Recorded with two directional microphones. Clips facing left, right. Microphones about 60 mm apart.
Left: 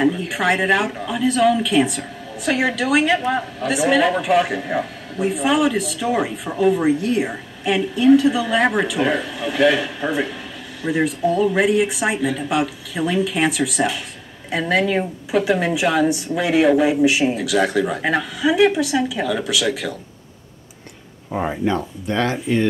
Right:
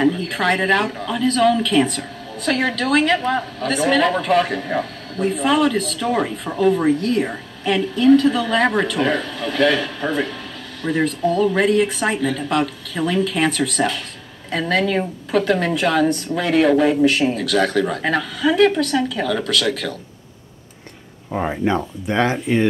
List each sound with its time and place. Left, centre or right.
0.0 s a woman's voice: centre
21.3 s speech: centre
21.6 s speech: centre